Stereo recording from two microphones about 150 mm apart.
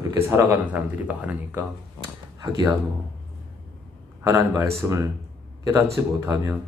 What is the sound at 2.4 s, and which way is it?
Speech, 25° right (ahead or behind).